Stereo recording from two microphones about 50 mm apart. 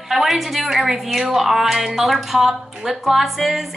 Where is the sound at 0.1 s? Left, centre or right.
Centre.